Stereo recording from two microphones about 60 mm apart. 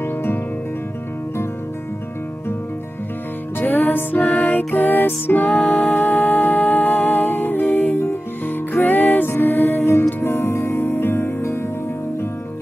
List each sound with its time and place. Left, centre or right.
0.0 s music: left
3.5 s music: left
5.5 s music: centre
5.9 s music: left